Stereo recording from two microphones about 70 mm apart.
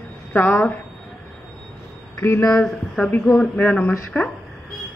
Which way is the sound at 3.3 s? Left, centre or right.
Left.